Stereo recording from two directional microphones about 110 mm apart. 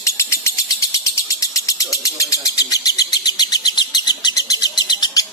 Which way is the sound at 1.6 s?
30° left (ahead or behind).